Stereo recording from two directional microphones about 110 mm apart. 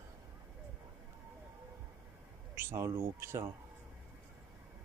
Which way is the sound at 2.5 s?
20° right (ahead or behind).